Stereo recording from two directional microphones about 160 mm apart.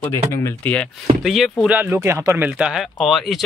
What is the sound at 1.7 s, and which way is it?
Speech, 10° right (ahead or behind).